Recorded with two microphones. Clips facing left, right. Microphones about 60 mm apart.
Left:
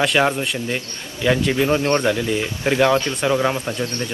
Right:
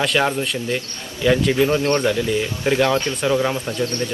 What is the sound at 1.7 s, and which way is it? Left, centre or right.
Speech, centre.